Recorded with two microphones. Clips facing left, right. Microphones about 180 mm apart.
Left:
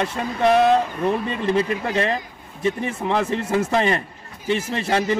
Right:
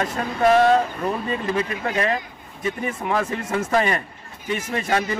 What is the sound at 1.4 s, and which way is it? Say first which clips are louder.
A man's voice: left 3 dB; 30° left (ahead or behind).